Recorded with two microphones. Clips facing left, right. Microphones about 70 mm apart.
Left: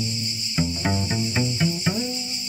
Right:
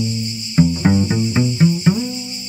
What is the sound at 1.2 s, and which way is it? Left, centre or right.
Cricket, centre.